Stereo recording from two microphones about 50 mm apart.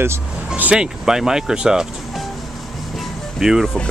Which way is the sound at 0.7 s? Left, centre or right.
Centre.